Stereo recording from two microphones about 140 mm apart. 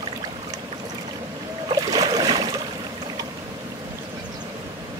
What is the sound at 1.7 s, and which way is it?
Boat, 30° right (ahead or behind).